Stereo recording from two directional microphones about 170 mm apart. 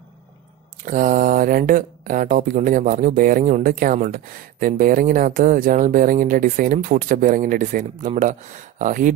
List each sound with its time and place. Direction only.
0.8 s speech: 50° right (ahead or behind)